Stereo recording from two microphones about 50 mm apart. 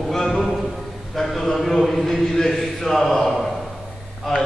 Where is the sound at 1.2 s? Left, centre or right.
Centre.